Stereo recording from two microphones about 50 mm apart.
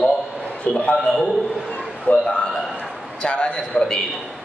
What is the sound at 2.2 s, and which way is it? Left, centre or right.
A man's voice, centre.